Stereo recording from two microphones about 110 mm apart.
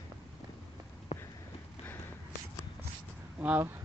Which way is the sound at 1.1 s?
70° left (ahead or behind).